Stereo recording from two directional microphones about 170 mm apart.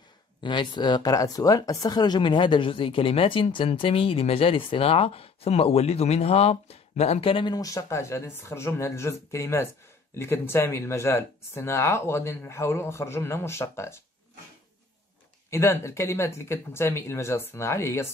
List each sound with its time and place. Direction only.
0.4 s speech: 25° left (ahead or behind)
15.5 s speech: 15° left (ahead or behind)